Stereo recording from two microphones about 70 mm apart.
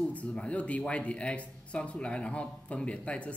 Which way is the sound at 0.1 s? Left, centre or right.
Centre.